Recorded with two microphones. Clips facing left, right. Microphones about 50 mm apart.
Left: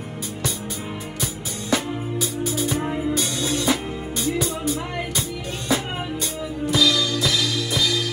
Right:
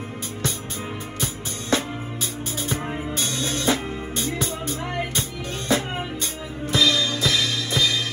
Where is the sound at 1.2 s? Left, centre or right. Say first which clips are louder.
Even; right.